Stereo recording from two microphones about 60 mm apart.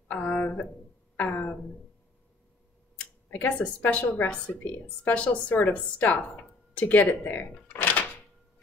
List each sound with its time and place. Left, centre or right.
0.1 s a sound: left
1.1 s speech: left
3.3 s a woman's voice: left